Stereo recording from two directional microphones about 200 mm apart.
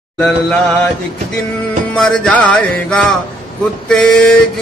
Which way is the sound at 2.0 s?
5° left (ahead or behind).